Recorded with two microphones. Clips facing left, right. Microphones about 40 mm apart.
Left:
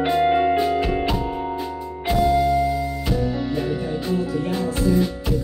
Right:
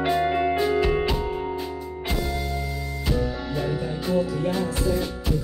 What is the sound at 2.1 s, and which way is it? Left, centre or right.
Music, centre.